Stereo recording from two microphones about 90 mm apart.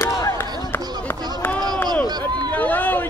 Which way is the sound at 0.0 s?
35° left (ahead or behind).